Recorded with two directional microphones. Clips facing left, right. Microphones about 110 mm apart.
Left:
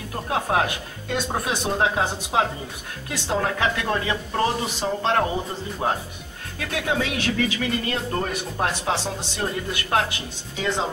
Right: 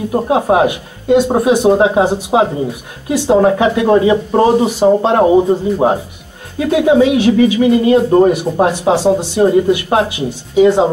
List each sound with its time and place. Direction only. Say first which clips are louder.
0.3 s speech: right 10 dB; 20° right (ahead or behind)